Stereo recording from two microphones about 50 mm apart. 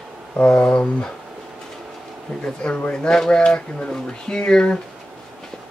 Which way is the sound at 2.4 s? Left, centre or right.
Left.